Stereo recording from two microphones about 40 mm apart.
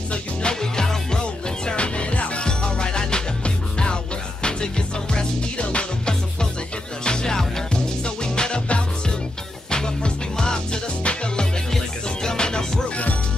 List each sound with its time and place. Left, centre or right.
0.1 s music: left
1.2 s music: left